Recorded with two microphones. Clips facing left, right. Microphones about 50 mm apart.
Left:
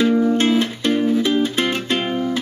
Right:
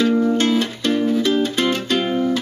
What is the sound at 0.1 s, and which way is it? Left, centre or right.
Music, centre.